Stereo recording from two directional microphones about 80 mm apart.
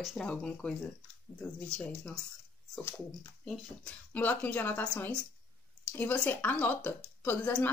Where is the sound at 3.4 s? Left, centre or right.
Centre.